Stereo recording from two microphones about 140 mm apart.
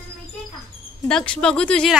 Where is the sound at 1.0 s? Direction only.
5° left (ahead or behind).